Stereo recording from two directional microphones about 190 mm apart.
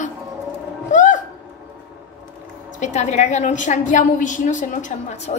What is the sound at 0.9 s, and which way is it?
Music, 40° left (ahead or behind).